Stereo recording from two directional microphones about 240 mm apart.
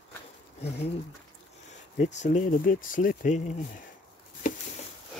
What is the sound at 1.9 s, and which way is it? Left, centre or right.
Speech, left.